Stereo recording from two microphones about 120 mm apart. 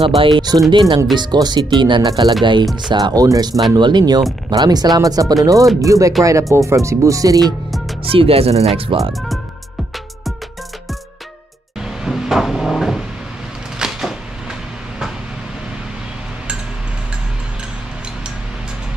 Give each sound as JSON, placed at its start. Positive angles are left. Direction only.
{"t": 0.0, "sound": "speech", "side_deg": -50}
{"t": 8.0, "sound": "speech", "side_deg": -50}
{"t": 12.0, "sound": "a sound", "side_deg": -5}
{"t": 13.7, "sound": "vehicle", "side_deg": -5}